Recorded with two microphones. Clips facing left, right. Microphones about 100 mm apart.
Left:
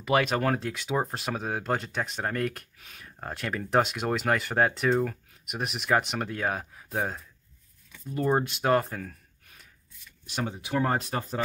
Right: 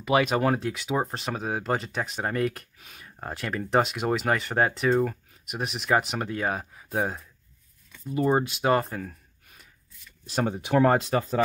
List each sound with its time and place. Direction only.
0.0 s speech: centre (ahead or behind)
10.2 s speech: 40° right (ahead or behind); by 11.1 s 90° right